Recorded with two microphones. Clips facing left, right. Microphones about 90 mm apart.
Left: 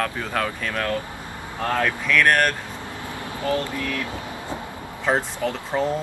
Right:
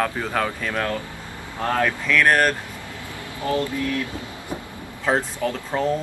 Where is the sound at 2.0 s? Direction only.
Centre (ahead or behind).